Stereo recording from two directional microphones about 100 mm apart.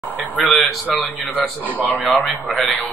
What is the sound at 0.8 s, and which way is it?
Speech, 15° left (ahead or behind).